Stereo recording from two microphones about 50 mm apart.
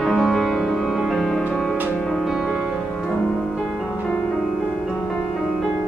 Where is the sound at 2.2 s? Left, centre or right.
Centre.